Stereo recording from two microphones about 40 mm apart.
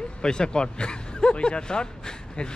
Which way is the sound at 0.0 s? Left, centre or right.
Left.